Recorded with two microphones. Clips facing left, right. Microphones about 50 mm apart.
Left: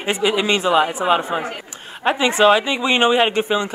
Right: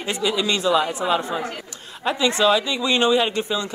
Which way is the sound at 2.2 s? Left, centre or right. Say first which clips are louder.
Left 4 dB; left.